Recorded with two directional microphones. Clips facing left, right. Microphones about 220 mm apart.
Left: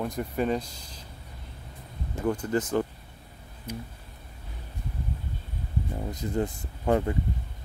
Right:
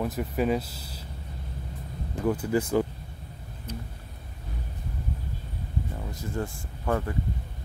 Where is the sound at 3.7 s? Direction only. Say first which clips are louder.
Left 1 dB; 10° left (ahead or behind).